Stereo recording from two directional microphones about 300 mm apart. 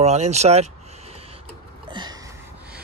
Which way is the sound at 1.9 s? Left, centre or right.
Centre.